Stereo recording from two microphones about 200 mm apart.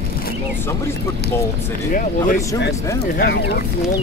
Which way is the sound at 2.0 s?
45° left (ahead or behind).